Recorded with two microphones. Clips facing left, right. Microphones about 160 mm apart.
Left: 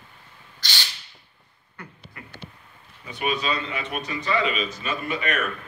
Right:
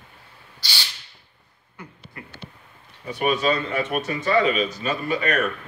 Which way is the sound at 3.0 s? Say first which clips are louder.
Right 5 dB; 45° right (ahead or behind).